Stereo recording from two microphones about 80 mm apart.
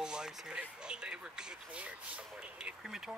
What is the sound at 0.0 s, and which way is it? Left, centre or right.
Speech, centre.